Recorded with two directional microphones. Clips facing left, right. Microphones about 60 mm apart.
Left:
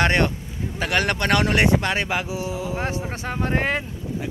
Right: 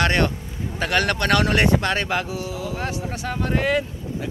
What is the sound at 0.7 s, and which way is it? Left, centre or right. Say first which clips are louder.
Speech: right 1 dB; centre.